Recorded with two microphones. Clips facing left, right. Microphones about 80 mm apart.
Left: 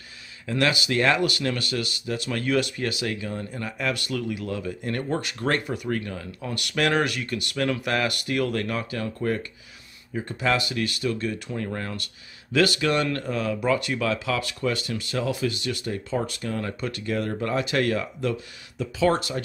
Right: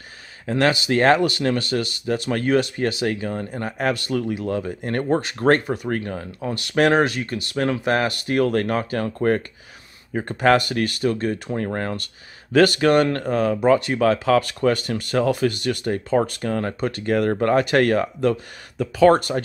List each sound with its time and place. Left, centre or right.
0.5 s speech: right